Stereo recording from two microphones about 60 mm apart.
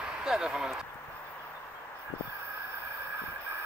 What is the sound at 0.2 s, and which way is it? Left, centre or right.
Speech, centre.